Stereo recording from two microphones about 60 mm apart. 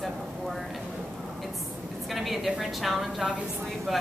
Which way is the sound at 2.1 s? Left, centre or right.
Centre.